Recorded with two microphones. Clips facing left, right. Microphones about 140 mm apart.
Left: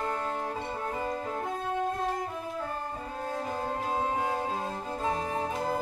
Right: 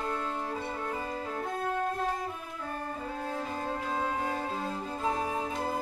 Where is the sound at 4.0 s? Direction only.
25° left (ahead or behind).